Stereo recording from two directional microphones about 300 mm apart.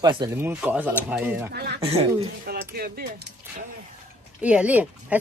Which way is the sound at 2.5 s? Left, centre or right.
Right.